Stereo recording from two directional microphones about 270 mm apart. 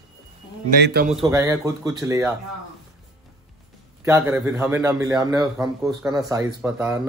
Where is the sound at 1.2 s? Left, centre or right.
Centre.